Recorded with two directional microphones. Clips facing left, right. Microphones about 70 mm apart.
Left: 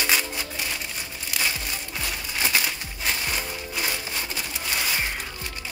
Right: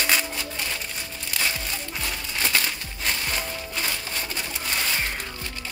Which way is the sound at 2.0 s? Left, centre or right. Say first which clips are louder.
Left 1 dB; centre.